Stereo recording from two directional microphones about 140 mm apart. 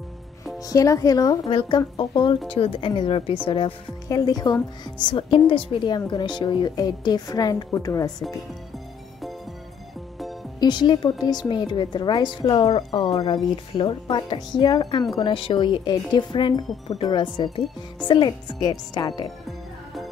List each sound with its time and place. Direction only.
0.7 s speech: 25° left (ahead or behind)
4.1 s speech: 25° left (ahead or behind)
10.6 s speech: 30° left (ahead or behind)
15.1 s speech: 40° left (ahead or behind)
19.4 s music: centre (ahead or behind)